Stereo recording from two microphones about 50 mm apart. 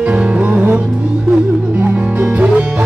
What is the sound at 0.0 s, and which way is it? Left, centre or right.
Music, right.